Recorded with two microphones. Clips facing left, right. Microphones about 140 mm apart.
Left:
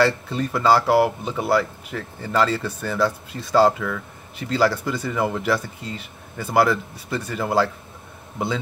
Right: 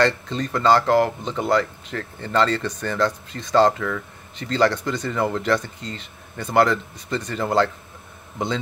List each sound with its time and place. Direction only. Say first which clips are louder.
0.0 s speech: left 1 dB; 10° left (ahead or behind)